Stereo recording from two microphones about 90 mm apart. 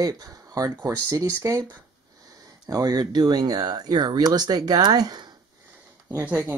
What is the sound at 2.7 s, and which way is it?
Speech, 45° right (ahead or behind).